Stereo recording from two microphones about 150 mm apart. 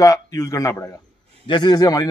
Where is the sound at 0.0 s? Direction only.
20° left (ahead or behind).